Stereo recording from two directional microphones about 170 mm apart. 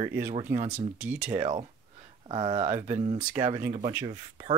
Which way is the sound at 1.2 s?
40° right (ahead or behind).